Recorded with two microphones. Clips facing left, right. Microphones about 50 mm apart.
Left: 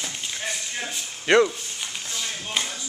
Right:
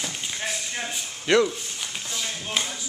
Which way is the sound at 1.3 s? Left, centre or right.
Left.